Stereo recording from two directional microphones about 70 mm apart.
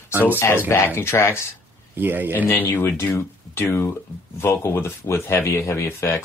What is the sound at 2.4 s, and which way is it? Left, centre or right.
Speech, left.